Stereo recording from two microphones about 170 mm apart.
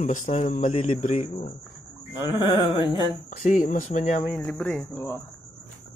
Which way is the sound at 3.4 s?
50° left (ahead or behind).